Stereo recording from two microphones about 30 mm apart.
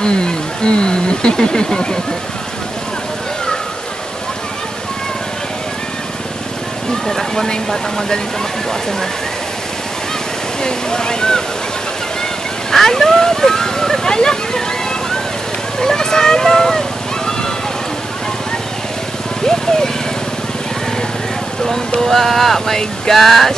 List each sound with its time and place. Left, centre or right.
0.0 s a sound: left
7.1 s speech: centre
10.6 s speech: left
12.7 s speech: centre
15.8 s speech: centre
22.0 s a sound: centre